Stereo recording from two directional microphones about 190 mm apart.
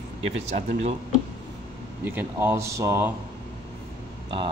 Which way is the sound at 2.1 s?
10° right (ahead or behind).